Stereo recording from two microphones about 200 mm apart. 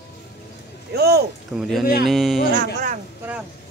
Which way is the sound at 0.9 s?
55° right (ahead or behind).